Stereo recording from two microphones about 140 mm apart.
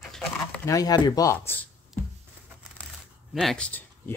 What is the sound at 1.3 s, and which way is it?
Speech, 15° left (ahead or behind).